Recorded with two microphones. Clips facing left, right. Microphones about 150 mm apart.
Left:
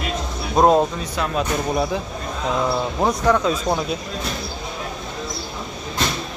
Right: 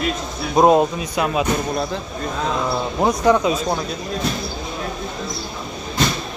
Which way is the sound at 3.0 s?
15° right (ahead or behind).